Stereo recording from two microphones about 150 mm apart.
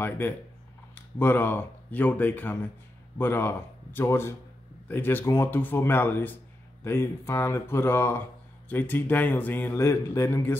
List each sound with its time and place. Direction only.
0.9 s speech: 15° left (ahead or behind)